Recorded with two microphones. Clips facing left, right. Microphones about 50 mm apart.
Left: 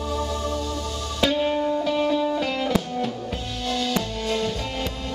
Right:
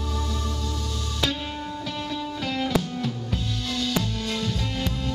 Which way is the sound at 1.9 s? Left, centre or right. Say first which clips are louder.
Left 9 dB; left.